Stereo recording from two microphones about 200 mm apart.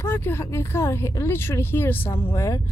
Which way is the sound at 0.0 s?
10° left (ahead or behind).